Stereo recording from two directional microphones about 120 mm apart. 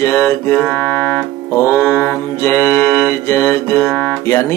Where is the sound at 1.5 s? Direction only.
20° left (ahead or behind).